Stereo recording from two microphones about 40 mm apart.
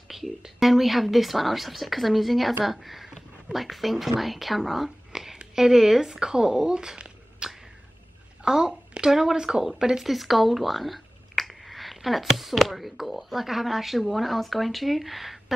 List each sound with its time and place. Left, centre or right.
0.1 s a sound: centre
0.6 s a woman's voice: centre
10.0 s speech: centre